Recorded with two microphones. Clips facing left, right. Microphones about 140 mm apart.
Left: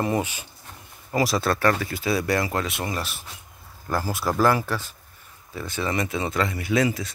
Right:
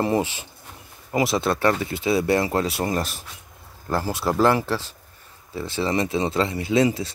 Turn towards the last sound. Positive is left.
turn(degrees=-30)  # may be behind; listen again after turning